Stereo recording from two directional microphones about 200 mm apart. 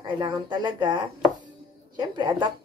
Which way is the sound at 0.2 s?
20° right (ahead or behind).